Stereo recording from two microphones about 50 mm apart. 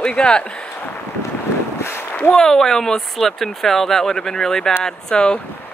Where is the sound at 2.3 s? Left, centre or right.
Centre.